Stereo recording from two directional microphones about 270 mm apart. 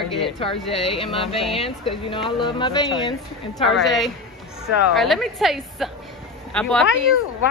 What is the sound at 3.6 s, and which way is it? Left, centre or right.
Speech, centre.